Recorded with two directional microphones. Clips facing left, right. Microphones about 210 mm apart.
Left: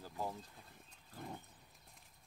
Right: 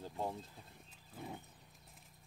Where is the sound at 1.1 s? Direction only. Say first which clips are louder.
Right 1 dB; 5° right (ahead or behind).